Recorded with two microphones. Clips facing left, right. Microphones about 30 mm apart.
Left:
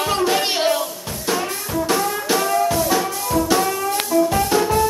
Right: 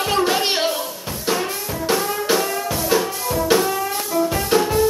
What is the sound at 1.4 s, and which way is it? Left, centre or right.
Music, centre.